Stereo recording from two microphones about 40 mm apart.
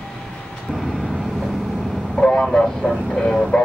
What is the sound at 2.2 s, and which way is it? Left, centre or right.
Vehicle, centre.